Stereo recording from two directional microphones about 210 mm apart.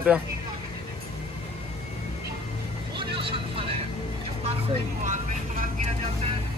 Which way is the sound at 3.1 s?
25° right (ahead or behind).